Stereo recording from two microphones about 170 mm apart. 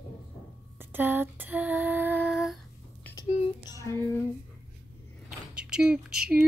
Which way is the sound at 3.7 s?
20° left (ahead or behind).